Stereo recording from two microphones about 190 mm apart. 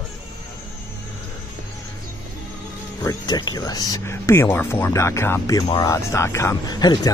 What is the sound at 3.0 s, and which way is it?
Speech, 20° left (ahead or behind).